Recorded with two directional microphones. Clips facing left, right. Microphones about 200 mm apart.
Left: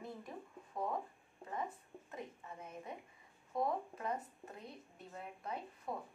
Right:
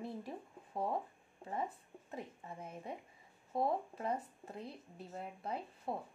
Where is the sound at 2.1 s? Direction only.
30° right (ahead or behind).